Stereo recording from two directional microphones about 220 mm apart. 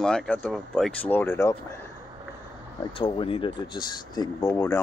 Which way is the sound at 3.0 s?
25° left (ahead or behind).